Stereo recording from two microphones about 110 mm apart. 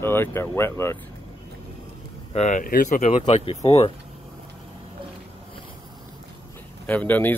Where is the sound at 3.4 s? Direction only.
60° left (ahead or behind).